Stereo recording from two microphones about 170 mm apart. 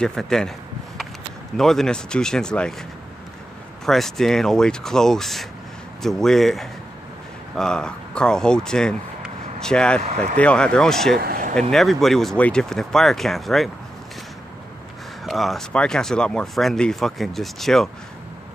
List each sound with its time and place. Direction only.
0.0 s speech: 5° left (ahead or behind)
1.6 s speech: centre (ahead or behind)
3.8 s speech: centre (ahead or behind)
11.1 s vehicle: 60° right (ahead or behind)
11.7 s speech: centre (ahead or behind)
15.2 s speech: centre (ahead or behind)